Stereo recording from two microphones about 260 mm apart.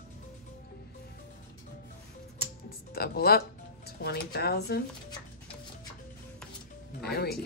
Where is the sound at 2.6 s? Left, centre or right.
Left.